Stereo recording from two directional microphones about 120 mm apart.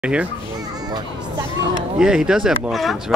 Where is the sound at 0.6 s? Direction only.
35° right (ahead or behind).